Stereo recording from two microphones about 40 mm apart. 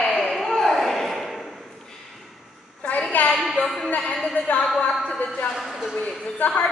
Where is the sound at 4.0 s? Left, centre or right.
Left.